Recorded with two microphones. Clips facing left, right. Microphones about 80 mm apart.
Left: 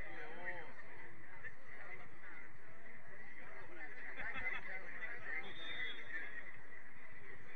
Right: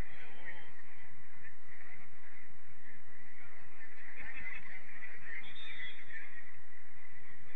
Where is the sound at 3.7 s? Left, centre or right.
Left.